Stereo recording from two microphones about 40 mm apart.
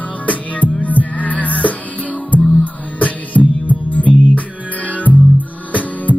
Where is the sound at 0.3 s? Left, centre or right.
Left.